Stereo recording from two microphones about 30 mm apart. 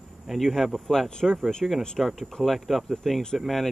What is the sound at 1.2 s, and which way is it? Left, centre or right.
Speech, right.